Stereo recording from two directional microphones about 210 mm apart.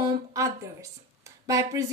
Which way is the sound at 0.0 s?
15° right (ahead or behind).